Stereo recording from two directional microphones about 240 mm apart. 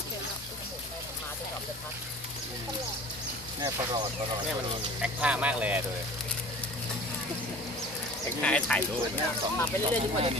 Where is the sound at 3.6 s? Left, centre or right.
Centre.